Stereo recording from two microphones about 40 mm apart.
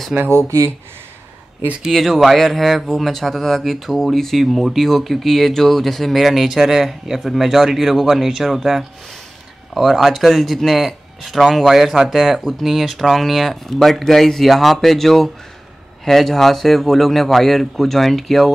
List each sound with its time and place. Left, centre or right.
0.1 s speech: right
1.9 s speech: centre